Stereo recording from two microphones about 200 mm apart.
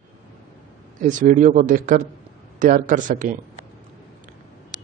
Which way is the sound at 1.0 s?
40° right (ahead or behind).